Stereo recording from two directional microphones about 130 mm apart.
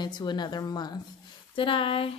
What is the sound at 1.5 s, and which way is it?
Speech, 40° left (ahead or behind).